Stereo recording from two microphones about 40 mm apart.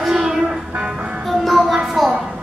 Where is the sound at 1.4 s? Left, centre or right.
Centre.